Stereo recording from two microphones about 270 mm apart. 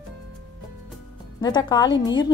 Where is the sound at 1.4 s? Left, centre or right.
Centre.